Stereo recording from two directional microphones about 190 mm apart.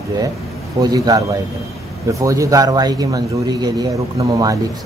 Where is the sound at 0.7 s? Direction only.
20° right (ahead or behind).